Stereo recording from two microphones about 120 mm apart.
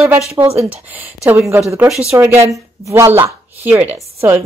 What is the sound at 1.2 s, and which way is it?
Speech, 20° right (ahead or behind).